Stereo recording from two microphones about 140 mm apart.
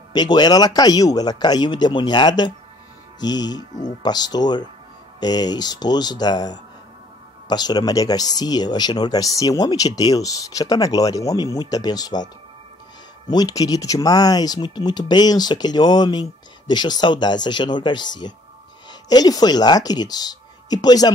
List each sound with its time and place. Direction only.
0.1 s speech: 30° left (ahead or behind)
13.3 s speech: 25° left (ahead or behind)